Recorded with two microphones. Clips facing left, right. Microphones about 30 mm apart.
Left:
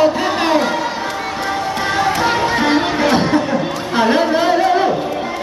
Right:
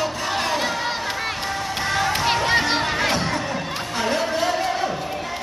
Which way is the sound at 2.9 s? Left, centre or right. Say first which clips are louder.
Left 8 dB; left.